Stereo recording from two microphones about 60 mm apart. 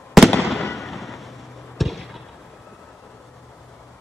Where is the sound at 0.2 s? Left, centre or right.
Centre.